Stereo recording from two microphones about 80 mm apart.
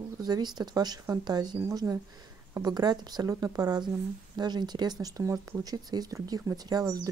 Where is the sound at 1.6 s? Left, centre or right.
Right.